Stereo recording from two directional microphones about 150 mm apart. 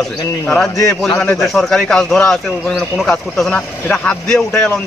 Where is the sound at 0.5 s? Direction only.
5° left (ahead or behind).